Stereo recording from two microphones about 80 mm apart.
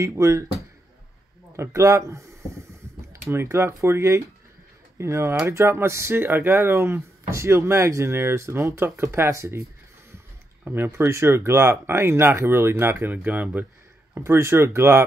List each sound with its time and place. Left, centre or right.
0.0 s speech: right
1.6 s speech: right
10.6 s speech: right
14.1 s speech: right